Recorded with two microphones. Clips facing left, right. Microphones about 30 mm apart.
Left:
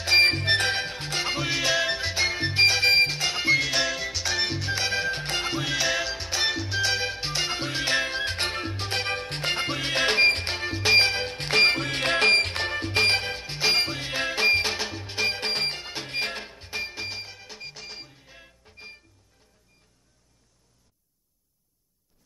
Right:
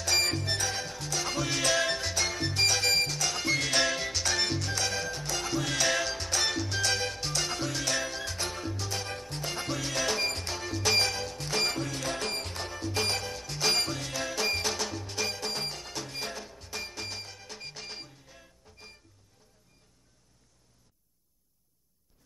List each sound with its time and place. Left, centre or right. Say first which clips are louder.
0.0 s music: left 8 dB; left
3.6 s music: left 1 dB; centre; by 5.1 s left
5.1 s music: left 4 dB; left
5.7 s music: left 1 dB; centre
15.2 s music: left 10 dB; left
15.8 s music: left 7 dB; left; by 18.0 s centre
18.0 s music: left 3 dB; left